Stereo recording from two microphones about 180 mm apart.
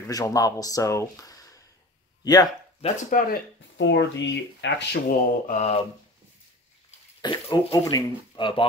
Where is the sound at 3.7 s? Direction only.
85° left.